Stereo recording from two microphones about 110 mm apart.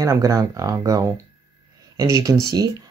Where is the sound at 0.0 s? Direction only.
30° right (ahead or behind).